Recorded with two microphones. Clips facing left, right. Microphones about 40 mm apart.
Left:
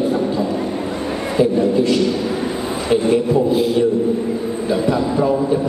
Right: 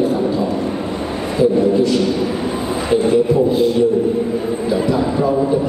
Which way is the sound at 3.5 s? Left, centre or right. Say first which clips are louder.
Right 2 dB; centre.